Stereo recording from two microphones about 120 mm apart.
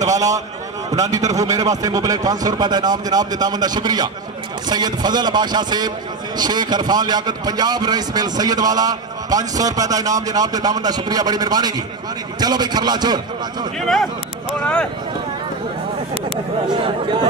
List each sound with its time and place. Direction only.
0.0 s a man's voice: 30° right (ahead or behind)
13.7 s speech: centre (ahead or behind)
16.6 s a man's voice: 40° right (ahead or behind)